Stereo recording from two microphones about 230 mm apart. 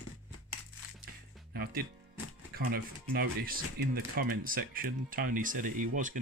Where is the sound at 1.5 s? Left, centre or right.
Right.